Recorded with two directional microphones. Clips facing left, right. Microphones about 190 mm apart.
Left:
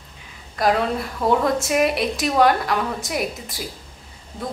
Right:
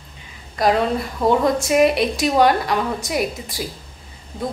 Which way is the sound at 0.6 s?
Centre (ahead or behind).